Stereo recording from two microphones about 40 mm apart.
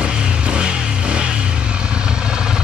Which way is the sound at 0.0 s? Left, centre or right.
Right.